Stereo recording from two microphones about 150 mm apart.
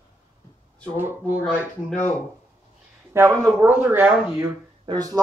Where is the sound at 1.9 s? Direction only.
50° left (ahead or behind).